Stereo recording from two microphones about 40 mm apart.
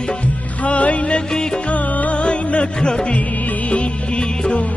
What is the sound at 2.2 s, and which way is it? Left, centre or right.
Music, left.